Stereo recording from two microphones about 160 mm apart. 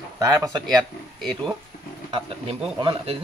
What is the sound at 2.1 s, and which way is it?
Speech, 35° right (ahead or behind).